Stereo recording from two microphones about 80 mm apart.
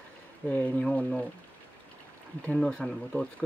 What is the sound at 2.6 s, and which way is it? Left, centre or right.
Speech, centre.